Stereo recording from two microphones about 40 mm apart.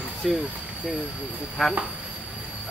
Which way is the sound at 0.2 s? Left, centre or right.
Centre.